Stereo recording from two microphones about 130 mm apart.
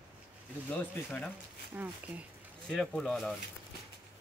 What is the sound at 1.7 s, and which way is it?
Speech, 10° right (ahead or behind).